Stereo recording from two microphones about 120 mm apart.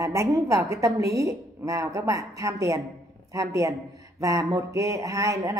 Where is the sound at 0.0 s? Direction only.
25° right (ahead or behind).